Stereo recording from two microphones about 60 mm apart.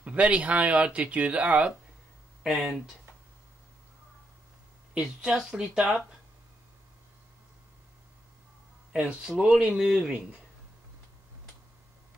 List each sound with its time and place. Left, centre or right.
0.0 s speech: right
2.4 s speech: centre
4.9 s speech: centre
8.9 s speech: centre